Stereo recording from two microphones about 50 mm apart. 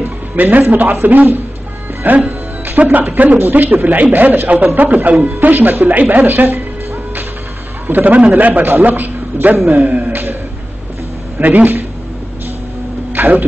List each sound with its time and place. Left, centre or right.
0.0 s a man's voice: right
7.9 s speech: right
11.3 s speech: right
13.1 s a sound: right